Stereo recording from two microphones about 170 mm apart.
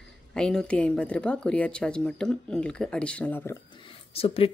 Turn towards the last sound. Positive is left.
turn(degrees=35)  # may be behind; listen again after turning